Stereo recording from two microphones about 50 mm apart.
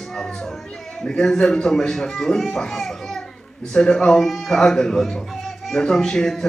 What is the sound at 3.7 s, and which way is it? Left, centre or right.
A man's voice, centre.